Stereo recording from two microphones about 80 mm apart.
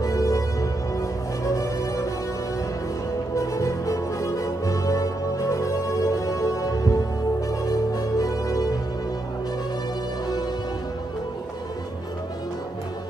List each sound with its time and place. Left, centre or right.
0.0 s music: left
3.3 s music: left